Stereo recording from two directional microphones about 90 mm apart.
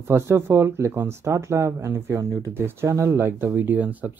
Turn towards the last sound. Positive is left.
turn(degrees=-20)  # may be behind; listen again after turning